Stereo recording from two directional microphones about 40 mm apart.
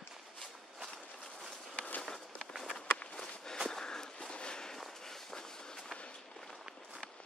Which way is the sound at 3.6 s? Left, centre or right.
Centre.